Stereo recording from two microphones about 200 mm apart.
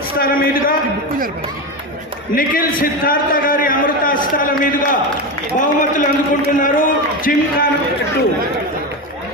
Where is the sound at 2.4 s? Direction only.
45° left (ahead or behind).